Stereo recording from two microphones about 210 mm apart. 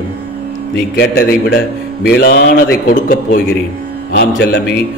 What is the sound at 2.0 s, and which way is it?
A man's voice, 50° left (ahead or behind).